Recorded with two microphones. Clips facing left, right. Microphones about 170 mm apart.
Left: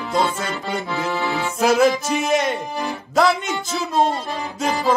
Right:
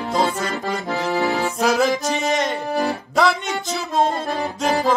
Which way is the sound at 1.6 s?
Centre (ahead or behind).